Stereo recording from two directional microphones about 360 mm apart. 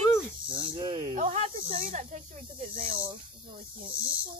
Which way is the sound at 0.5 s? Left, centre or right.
Centre.